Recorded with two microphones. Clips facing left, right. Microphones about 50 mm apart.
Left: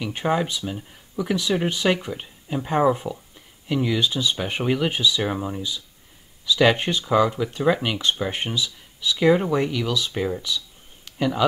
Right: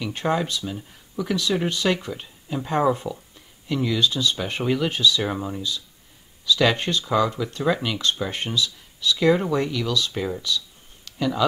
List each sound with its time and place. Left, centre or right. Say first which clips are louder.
0.0 s speech: left 1 dB; centre